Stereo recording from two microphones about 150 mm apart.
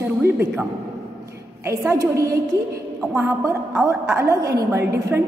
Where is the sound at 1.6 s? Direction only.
20° right (ahead or behind).